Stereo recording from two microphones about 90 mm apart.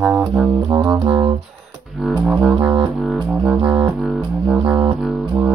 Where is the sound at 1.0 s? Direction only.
65° right (ahead or behind).